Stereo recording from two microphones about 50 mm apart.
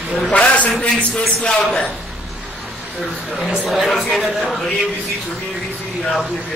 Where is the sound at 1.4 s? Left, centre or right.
Centre.